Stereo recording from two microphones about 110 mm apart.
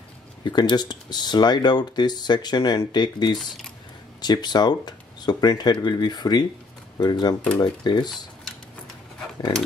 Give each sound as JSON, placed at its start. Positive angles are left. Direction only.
{"t": 0.4, "sound": "speech", "side_deg": 40}
{"t": 3.3, "sound": "speech", "side_deg": 0}
{"t": 4.2, "sound": "speech", "side_deg": 40}